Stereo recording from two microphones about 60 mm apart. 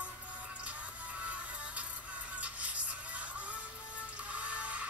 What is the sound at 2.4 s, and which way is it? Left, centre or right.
Music, right.